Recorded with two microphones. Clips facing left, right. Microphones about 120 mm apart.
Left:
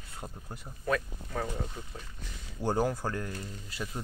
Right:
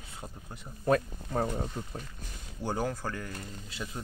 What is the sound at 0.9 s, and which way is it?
Speech, 40° right (ahead or behind).